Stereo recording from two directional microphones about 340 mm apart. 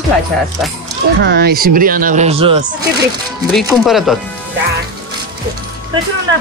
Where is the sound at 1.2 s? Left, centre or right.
Right.